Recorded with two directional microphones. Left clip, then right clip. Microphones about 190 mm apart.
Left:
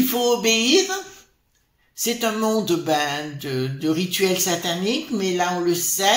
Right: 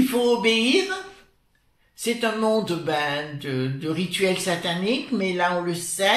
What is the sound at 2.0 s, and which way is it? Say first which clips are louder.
Speech: left 1 dB; 50° left (ahead or behind).